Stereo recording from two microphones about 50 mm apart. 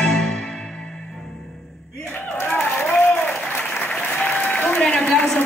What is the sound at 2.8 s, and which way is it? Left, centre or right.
Applause, left.